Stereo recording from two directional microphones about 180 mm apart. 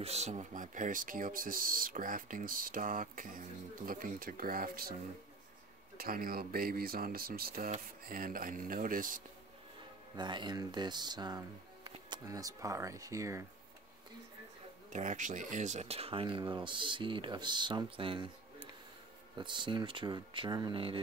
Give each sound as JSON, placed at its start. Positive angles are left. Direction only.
{"t": 0.0, "sound": "speech", "side_deg": -35}
{"t": 5.9, "sound": "speech", "side_deg": -55}
{"t": 10.1, "sound": "speech", "side_deg": -25}
{"t": 14.9, "sound": "speech", "side_deg": -45}
{"t": 19.3, "sound": "speech", "side_deg": -25}